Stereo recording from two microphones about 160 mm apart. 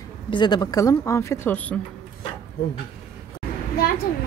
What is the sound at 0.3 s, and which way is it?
Speech, 30° left (ahead or behind).